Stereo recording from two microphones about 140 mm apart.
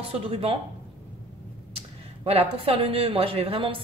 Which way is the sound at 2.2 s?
45° right (ahead or behind).